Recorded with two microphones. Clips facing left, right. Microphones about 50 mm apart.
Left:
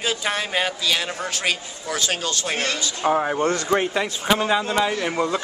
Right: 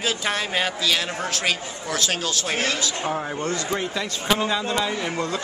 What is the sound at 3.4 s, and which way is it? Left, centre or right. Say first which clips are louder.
Speech: left 5 dB; left.